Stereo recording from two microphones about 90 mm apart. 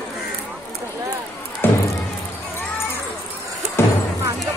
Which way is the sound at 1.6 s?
25° left (ahead or behind).